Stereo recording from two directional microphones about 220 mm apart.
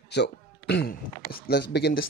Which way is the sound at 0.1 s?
50° left (ahead or behind).